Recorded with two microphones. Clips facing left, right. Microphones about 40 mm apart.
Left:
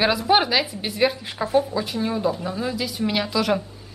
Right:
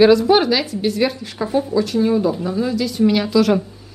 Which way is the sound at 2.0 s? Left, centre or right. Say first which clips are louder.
Right 6 dB; centre.